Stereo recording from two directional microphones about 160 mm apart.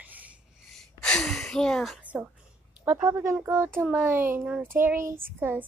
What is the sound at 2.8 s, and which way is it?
A woman's voice, 15° right (ahead or behind).